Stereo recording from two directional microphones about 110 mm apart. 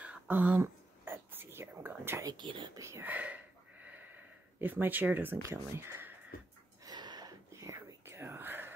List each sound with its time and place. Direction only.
0.0 s a sound: 15° right (ahead or behind)
0.6 s whispering: 20° right (ahead or behind)
2.2 s speech: 45° right (ahead or behind)
2.8 s speech: 25° right (ahead or behind)
3.1 s speech: 15° right (ahead or behind)
6.8 s whispering: 40° right (ahead or behind); by 8.7 s 20° right (ahead or behind)